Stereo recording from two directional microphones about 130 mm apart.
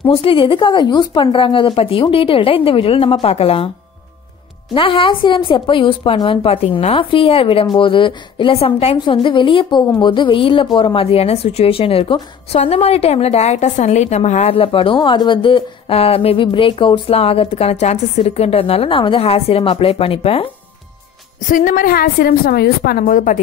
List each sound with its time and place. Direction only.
0.0 s speech: 45° left (ahead or behind)
4.7 s a woman's voice: 40° left (ahead or behind)
21.5 s a woman's voice: 90° left